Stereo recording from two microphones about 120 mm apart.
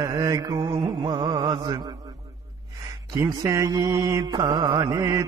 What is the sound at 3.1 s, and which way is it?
Mantra, 30° right (ahead or behind).